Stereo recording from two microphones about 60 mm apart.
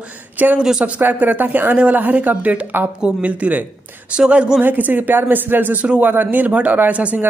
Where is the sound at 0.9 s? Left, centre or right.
Right; by 4.6 s centre.